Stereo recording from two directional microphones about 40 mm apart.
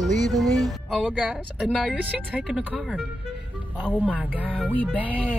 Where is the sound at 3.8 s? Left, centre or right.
Left.